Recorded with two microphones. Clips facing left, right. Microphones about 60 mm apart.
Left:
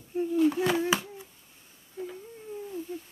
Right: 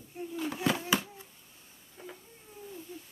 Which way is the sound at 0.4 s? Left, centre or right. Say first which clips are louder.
Left 7 dB; centre.